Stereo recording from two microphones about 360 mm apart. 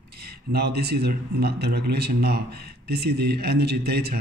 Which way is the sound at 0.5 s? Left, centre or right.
Right.